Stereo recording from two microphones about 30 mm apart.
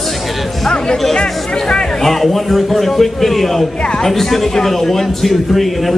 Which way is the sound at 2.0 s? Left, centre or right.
Centre.